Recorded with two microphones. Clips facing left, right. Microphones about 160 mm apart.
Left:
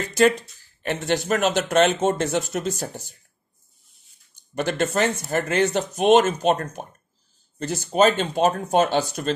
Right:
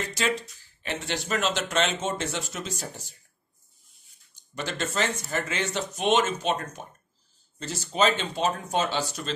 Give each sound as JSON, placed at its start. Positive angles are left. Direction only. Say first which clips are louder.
{"t": 0.8, "sound": "speech", "louder": "left 8 dB", "side_deg": 50}
{"t": 4.6, "sound": "speech", "louder": "left 7 dB", "side_deg": 55}